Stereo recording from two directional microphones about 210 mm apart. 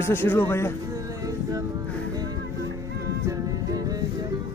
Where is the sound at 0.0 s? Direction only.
10° left (ahead or behind).